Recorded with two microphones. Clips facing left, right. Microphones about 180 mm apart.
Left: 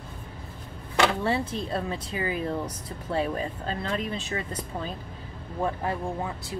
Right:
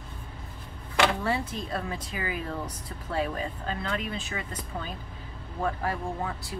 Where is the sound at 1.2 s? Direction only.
25° left (ahead or behind).